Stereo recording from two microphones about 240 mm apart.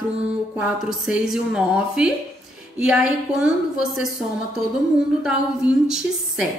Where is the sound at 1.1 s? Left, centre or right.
Centre.